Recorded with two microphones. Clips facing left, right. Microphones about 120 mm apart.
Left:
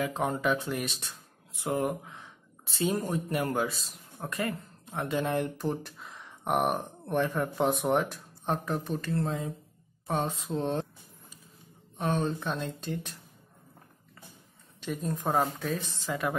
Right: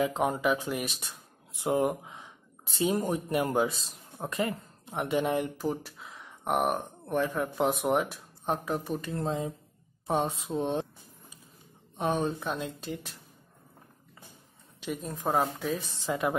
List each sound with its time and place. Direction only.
0.0 s speech: 15° right (ahead or behind)
1.6 s speech: 20° right (ahead or behind)
10.0 s a sound: 15° right (ahead or behind)
12.0 s speech: 15° right (ahead or behind)
14.8 s speech: 5° right (ahead or behind)
16.1 s a woman's voice: 20° right (ahead or behind)